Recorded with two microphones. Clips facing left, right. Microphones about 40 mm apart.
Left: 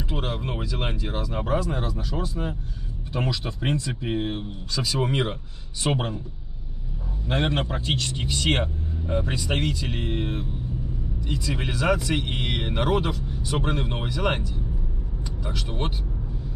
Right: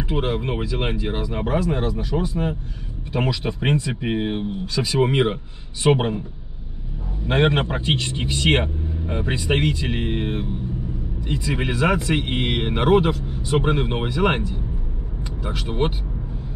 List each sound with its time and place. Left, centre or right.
0.1 s speech: right
7.2 s speech: right
13.1 s speech: centre
13.5 s speech: right